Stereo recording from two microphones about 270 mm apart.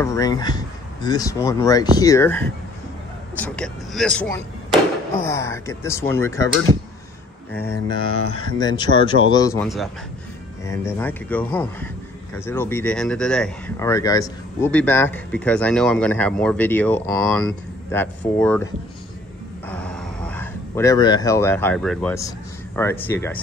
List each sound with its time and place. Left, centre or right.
0.0 s speech: centre
7.5 s speech: centre
19.7 s speech: centre